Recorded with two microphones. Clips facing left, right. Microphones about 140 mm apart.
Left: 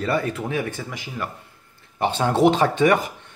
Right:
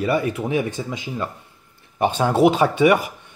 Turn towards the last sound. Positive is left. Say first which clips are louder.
# right 2 dB
turn(degrees=-10)  # may be behind; listen again after turning